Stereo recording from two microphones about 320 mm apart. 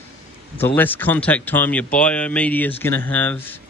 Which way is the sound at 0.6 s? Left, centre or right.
Centre.